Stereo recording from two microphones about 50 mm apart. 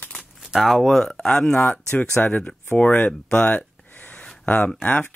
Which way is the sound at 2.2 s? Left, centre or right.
Left.